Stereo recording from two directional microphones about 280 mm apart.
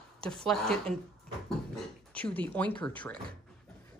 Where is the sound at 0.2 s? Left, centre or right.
Centre.